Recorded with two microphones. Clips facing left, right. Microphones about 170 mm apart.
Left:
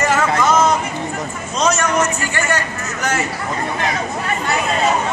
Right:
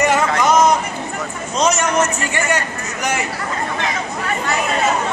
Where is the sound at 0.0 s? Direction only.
15° right (ahead or behind).